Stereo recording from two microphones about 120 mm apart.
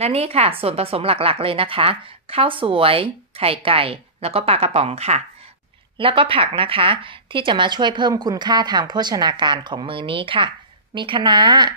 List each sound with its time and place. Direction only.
0.0 s a woman's voice: 55° right (ahead or behind)
5.9 s a woman's voice: 45° right (ahead or behind)